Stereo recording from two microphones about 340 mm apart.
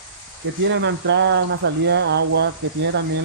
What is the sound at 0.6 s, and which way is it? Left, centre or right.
Speech, right.